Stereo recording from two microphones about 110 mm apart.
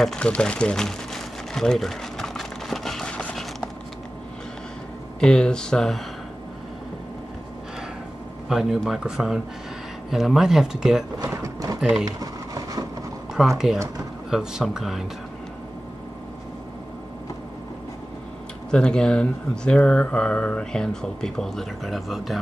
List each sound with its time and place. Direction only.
0.0 s a sound: 10° left (ahead or behind)
5.2 s speech: 5° left (ahead or behind)
8.5 s speech: 5° right (ahead or behind)
11.4 s mechanisms: 35° right (ahead or behind)
12.0 s a sound: 35° right (ahead or behind)
13.3 s speech: 5° right (ahead or behind)
18.7 s speech: 5° left (ahead or behind)